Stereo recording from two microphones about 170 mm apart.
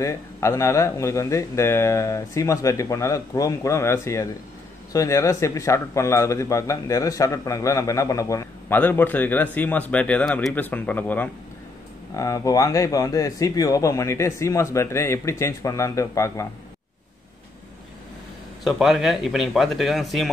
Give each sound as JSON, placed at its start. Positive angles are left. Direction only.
{"t": 0.0, "sound": "a man's voice", "side_deg": 15}
{"t": 18.6, "sound": "speech", "side_deg": 0}